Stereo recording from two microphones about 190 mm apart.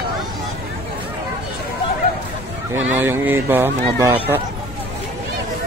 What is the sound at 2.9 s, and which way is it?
Speech, 10° right (ahead or behind).